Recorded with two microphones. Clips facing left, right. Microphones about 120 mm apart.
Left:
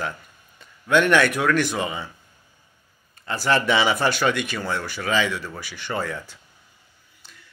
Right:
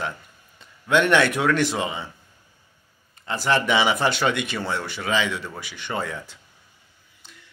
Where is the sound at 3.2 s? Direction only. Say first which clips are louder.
Left 1 dB; 20° right (ahead or behind).